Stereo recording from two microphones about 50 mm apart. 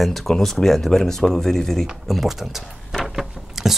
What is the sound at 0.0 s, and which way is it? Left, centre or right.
Speech, centre.